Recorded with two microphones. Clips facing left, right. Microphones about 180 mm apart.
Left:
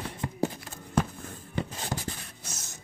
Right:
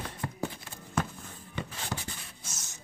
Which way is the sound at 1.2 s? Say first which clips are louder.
Left 5 dB; 45° left (ahead or behind).